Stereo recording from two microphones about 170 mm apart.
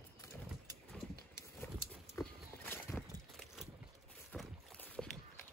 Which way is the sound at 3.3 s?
Centre (ahead or behind).